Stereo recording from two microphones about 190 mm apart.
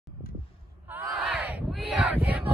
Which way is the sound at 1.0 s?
Centre (ahead or behind).